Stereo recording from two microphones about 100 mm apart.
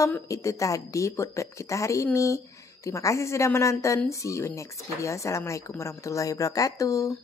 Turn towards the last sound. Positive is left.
turn(degrees=30)  # may be behind; listen again after turning